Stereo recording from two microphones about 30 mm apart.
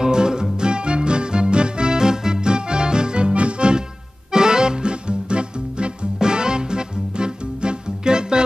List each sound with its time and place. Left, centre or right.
0.0 s music: right
4.3 s music: right